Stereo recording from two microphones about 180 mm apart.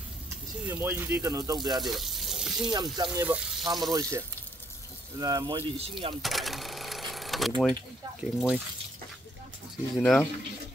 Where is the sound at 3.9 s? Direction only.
20° right (ahead or behind).